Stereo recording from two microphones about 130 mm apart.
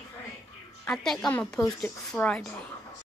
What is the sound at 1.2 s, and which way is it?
A woman's voice, 5° left (ahead or behind).